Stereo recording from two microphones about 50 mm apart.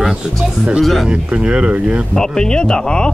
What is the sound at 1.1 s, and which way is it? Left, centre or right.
Speech, right.